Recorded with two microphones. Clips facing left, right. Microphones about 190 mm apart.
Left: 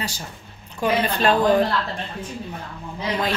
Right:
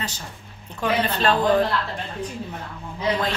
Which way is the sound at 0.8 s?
10° left (ahead or behind).